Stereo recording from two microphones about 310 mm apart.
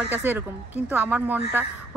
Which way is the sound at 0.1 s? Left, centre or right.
Centre.